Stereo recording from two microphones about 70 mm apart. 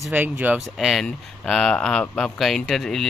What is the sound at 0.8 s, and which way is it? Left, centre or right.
Speech, centre.